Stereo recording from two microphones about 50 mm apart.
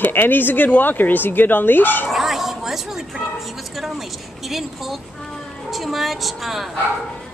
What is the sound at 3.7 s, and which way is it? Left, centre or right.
A woman's voice, centre.